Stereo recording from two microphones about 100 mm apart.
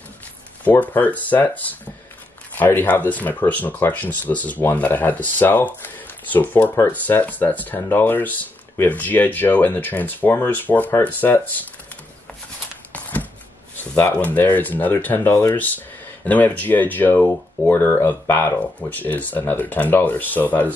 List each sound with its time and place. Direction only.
0.7 s speech: 15° left (ahead or behind)
12.9 s a sound: 15° left (ahead or behind)
13.9 s speech: 20° left (ahead or behind)